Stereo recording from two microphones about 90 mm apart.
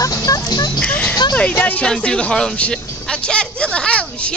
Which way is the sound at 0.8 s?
15° left (ahead or behind).